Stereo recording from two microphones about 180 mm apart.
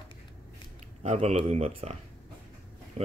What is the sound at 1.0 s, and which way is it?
Speech, 40° right (ahead or behind).